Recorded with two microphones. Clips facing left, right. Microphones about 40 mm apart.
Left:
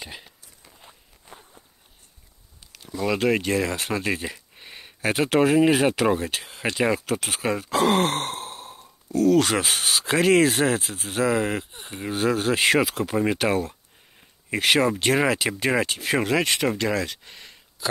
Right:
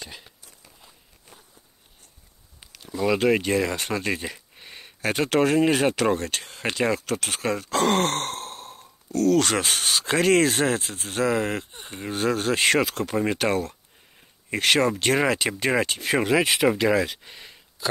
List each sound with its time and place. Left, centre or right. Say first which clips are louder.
0.0 s speech: left 2 dB; centre
0.8 s walk: left 8 dB; left
2.7 s speech: right 2 dB; centre